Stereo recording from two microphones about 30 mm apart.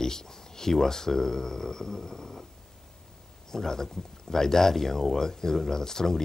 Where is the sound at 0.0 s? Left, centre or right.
Centre.